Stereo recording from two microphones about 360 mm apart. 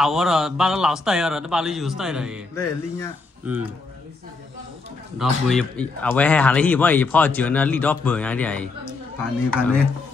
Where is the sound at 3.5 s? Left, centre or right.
Centre.